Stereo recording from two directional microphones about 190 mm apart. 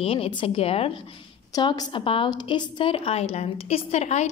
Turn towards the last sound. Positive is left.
turn(degrees=35)  # may be behind; listen again after turning